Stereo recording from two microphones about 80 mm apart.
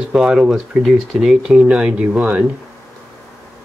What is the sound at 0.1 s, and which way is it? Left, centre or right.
Speech, centre.